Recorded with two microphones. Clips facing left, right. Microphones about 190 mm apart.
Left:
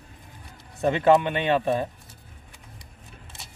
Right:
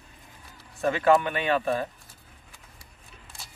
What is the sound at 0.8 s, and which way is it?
Speech, 25° left (ahead or behind).